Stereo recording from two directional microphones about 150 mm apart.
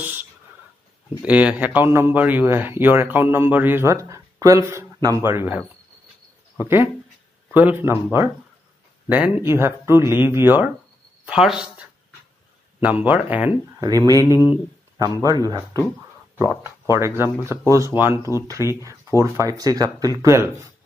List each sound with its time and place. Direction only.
0.0 s speech: 10° right (ahead or behind)
6.6 s speech: 15° right (ahead or behind)
13.7 s speech: 25° right (ahead or behind)
14.2 s speech: 25° left (ahead or behind)
15.2 s speech: 25° right (ahead or behind)